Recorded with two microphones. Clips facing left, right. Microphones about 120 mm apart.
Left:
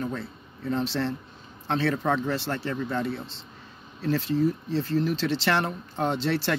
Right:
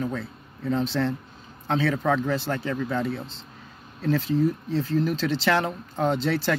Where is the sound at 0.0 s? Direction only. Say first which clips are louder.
Right 2 dB; centre (ahead or behind).